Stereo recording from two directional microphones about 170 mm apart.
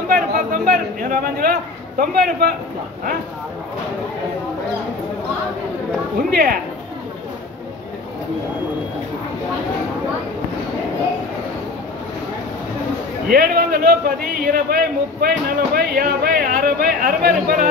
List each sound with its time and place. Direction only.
0.1 s a sound: 55° right (ahead or behind)
6.3 s a man's voice: 55° right (ahead or behind)
13.3 s a man's voice: 65° right (ahead or behind)